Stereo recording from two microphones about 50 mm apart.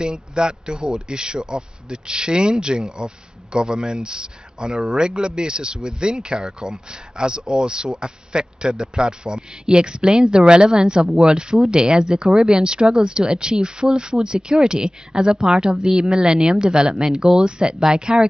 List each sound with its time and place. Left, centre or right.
0.0 s speech: centre